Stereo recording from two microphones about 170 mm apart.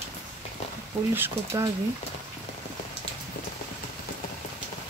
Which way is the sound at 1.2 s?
15° right (ahead or behind).